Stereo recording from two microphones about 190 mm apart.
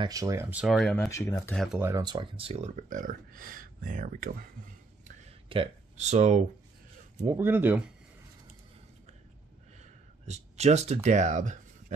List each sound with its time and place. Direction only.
0.0 s speech: 20° right (ahead or behind); by 0.9 s centre (ahead or behind)
0.9 s speech: 15° left (ahead or behind)
1.8 s speech: 15° right (ahead or behind); by 4.5 s 45° right (ahead or behind)
5.0 s a sound: 30° right (ahead or behind)
7.2 s speech: 15° right (ahead or behind)
9.8 s speech: 35° right (ahead or behind)